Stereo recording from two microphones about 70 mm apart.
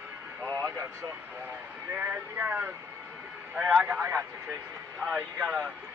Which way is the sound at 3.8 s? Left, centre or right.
Right.